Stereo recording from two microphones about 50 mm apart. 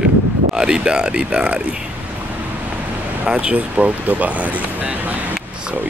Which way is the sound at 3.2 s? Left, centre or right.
Right.